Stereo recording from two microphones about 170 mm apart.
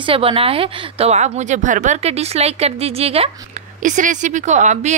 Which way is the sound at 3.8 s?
50° right (ahead or behind).